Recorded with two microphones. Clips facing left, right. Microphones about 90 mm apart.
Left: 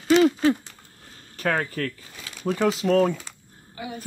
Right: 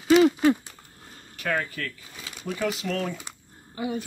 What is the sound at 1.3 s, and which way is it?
Speech, 40° left (ahead or behind).